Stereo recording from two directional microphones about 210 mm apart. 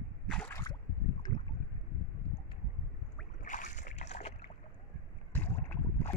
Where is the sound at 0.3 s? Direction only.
10° left (ahead or behind).